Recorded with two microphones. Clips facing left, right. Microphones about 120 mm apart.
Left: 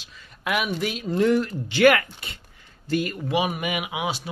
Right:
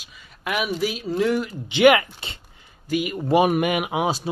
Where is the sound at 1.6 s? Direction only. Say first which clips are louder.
Right 3 dB; 20° right (ahead or behind).